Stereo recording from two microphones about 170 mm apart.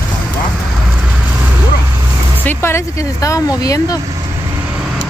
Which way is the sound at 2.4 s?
15° left (ahead or behind).